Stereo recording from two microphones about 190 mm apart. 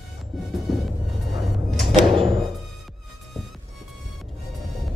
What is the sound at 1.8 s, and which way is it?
Music, 25° right (ahead or behind).